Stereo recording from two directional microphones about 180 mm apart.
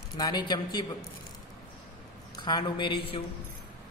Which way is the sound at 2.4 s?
25° left (ahead or behind).